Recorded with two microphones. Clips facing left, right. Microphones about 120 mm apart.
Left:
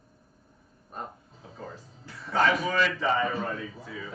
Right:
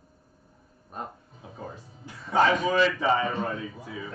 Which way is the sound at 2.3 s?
25° right (ahead or behind).